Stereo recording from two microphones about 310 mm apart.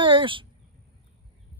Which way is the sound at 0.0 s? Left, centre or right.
Centre.